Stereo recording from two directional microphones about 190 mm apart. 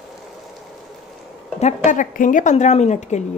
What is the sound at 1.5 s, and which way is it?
Speech, 40° left (ahead or behind).